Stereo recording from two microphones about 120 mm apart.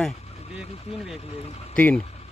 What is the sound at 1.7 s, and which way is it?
Speech, 10° left (ahead or behind).